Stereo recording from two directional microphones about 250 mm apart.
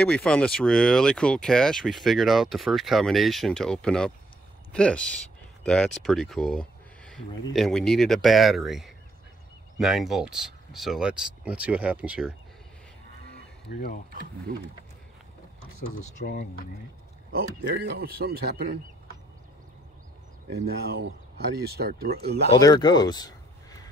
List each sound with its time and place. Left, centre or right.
0.0 s speech: centre
17.3 s speech: right
20.6 s speech: right
22.5 s speech: centre